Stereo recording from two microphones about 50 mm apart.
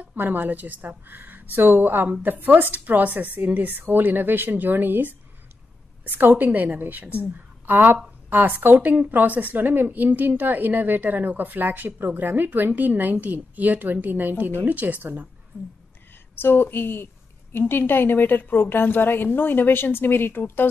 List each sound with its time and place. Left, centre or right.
0.0 s a woman's voice: right
16.3 s a woman's voice: left